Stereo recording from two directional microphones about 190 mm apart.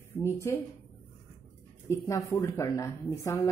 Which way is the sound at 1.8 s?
15° left (ahead or behind).